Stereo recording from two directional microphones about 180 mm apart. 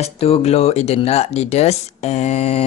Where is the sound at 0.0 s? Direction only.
35° left (ahead or behind).